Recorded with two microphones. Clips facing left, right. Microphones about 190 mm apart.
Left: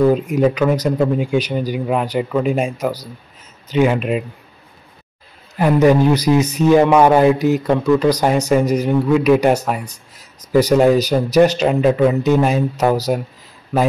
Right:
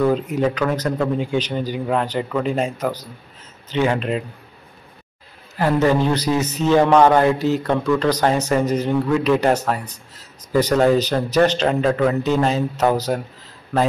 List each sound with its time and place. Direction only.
0.0 s speech: 15° left (ahead or behind)
5.6 s speech: 15° left (ahead or behind)